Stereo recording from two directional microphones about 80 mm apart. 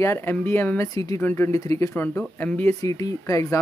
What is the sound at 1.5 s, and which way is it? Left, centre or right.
Speech, left.